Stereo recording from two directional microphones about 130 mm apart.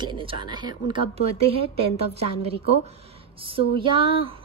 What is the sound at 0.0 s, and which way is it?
A woman's voice, 40° right (ahead or behind).